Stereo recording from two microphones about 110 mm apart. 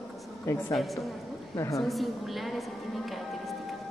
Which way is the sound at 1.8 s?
Centre (ahead or behind).